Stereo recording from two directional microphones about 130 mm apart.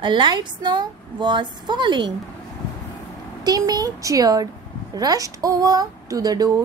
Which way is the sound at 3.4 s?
30° right (ahead or behind).